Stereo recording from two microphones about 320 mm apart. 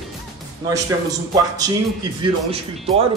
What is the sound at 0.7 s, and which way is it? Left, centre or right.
Speech, centre.